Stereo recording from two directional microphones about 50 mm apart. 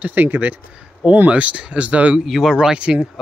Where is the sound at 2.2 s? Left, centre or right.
Centre.